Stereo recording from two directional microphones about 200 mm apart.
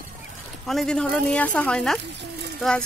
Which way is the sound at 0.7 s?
Centre (ahead or behind).